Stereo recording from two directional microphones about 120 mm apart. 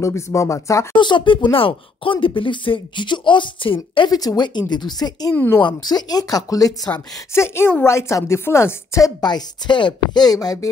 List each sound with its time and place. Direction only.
0.0 s speech: 25° left (ahead or behind)
0.9 s speech: 40° left (ahead or behind)
4.1 s speech: 35° left (ahead or behind)
5.3 s speech: 15° left (ahead or behind)
5.6 s speech: 40° left (ahead or behind)
9.2 s speech: 40° left (ahead or behind)